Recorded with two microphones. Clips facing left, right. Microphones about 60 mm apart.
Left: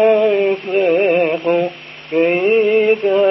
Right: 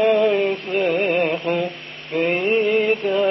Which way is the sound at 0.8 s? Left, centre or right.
Centre.